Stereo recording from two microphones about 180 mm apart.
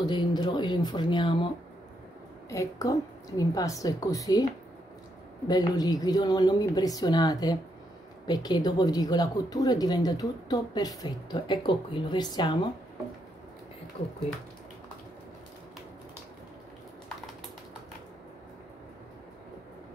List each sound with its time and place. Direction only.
0.0 s speech: 25° left (ahead or behind)
2.5 s speech: 20° left (ahead or behind)
5.5 s speech: 20° left (ahead or behind)